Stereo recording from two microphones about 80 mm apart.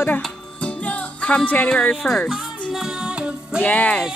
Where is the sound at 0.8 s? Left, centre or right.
Centre.